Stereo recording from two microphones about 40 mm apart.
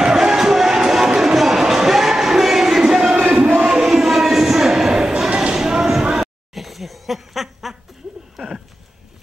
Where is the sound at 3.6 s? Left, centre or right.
Centre.